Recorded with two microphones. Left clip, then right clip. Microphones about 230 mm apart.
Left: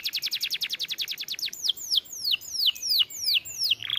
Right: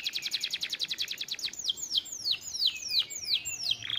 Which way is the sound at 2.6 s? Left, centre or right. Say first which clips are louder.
Left 5 dB; left.